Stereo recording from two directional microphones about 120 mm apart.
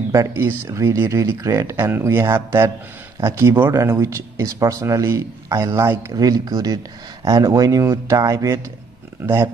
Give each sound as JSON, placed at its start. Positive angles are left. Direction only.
{"t": 0.1, "sound": "speech", "side_deg": -25}